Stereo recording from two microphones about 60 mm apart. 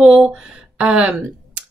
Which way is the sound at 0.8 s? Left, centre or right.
Centre.